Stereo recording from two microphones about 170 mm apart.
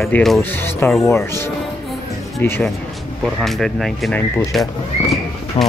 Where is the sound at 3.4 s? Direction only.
Centre (ahead or behind).